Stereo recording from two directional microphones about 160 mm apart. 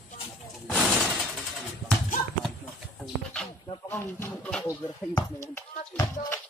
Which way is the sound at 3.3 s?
10° left (ahead or behind).